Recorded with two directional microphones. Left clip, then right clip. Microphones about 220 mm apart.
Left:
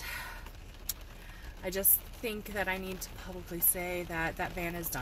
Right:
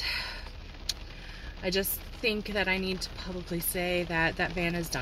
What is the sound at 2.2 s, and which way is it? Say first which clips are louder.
Speech: right 6 dB; 15° right (ahead or behind).